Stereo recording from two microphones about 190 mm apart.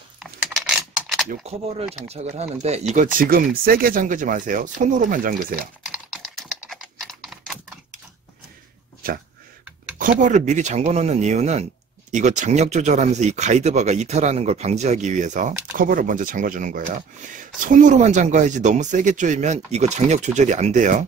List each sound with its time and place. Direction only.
0.2 s a sound: centre (ahead or behind)
1.5 s speech: 35° right (ahead or behind)
6.2 s typing: centre (ahead or behind)
9.0 s speech: 50° right (ahead or behind)